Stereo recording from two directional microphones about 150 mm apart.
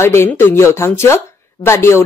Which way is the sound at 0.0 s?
15° left (ahead or behind).